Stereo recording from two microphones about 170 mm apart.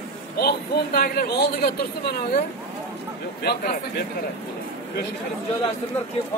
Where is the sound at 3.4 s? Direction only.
65° left (ahead or behind).